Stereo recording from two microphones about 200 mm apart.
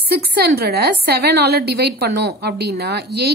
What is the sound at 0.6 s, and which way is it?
A woman's voice, 55° right (ahead or behind).